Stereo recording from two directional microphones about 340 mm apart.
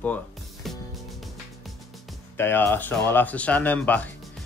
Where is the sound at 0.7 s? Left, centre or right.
Centre.